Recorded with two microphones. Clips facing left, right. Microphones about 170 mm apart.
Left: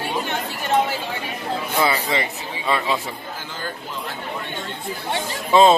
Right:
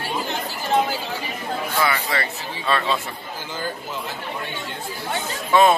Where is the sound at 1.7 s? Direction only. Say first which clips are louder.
Left 3 dB; 20° left (ahead or behind).